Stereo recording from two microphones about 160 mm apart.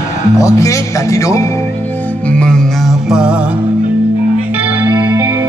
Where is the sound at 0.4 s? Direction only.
20° left (ahead or behind).